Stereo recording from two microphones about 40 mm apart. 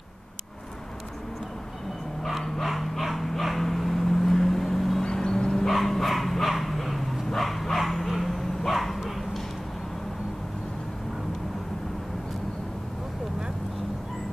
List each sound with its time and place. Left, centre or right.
2.6 s dog: centre
5.0 s vehicle: centre
5.5 s bow-wow: centre